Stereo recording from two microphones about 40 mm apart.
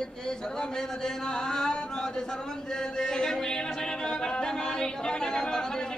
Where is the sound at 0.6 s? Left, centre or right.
Centre.